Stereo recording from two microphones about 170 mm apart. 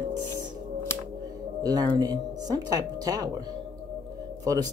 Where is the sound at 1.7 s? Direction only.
25° right (ahead or behind).